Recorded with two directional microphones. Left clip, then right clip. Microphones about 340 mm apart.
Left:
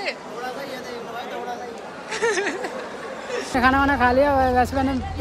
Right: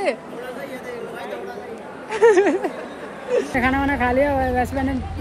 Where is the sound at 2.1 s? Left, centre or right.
Centre.